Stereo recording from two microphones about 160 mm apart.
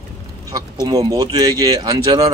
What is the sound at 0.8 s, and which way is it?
Speech, 25° right (ahead or behind).